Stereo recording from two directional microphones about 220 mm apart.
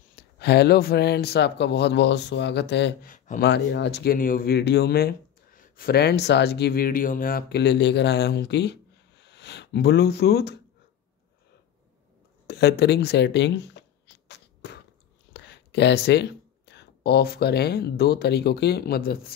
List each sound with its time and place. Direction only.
0.1 s speech: 50° left (ahead or behind)
3.1 s speech: 40° left (ahead or behind)
3.4 s speech: 50° left (ahead or behind)
12.4 s a sound: 50° left (ahead or behind)
15.3 s speech: 50° left (ahead or behind)